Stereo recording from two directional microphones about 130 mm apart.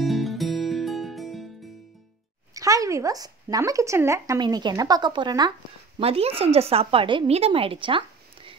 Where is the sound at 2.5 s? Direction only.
25° right (ahead or behind).